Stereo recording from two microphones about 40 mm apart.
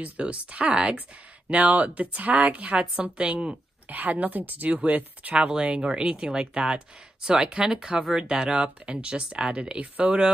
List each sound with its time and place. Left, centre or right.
0.0 s speech: right
3.9 s speech: right